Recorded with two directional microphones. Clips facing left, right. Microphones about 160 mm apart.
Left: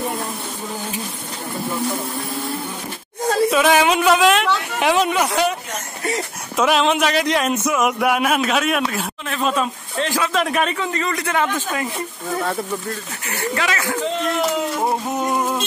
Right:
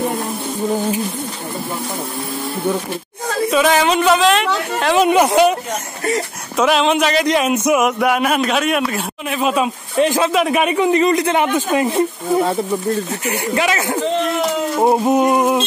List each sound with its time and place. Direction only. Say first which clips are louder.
3.4 s speech: right 2 dB; 5° left (ahead or behind)
5.0 s speech: right 7 dB; 20° right (ahead or behind)
6.5 s speech: right 2 dB; centre (ahead or behind)
7.5 s speech: right 6 dB; 20° right (ahead or behind)
7.8 s speech: right 2 dB; centre (ahead or behind); by 10.3 s 20° right (ahead or behind)
10.3 s speech: right 5 dB; 5° right (ahead or behind)